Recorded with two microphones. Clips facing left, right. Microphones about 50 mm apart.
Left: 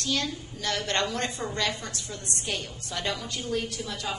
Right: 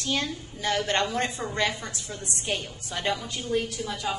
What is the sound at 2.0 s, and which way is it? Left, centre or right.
Speech, right.